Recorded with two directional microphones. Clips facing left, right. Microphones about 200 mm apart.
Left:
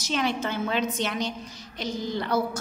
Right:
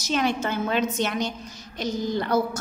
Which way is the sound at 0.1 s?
50° right (ahead or behind).